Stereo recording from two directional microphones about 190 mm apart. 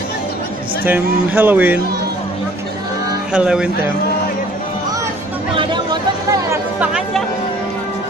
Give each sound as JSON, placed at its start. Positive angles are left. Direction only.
{"t": 0.8, "sound": "speech", "side_deg": -10}
{"t": 3.3, "sound": "speech", "side_deg": -5}
{"t": 5.5, "sound": "chatter", "side_deg": -25}